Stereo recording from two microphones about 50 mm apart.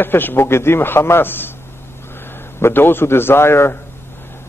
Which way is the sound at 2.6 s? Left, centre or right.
Left.